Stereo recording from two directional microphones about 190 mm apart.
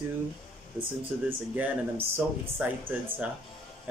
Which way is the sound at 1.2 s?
10° right (ahead or behind).